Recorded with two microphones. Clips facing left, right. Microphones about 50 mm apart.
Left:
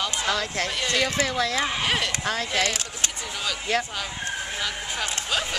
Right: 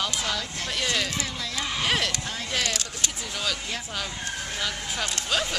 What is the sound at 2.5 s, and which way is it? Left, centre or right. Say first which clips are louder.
Speech: left 3 dB; left.